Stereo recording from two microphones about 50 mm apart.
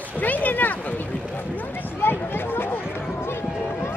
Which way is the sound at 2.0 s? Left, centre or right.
Left.